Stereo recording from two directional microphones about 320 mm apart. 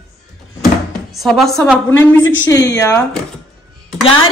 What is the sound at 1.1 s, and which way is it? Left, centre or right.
Speech, centre.